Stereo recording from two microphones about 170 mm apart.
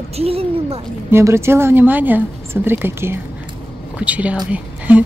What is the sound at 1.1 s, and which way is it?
Speech, 15° right (ahead or behind).